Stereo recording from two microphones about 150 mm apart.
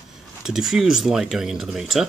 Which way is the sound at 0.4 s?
Centre (ahead or behind).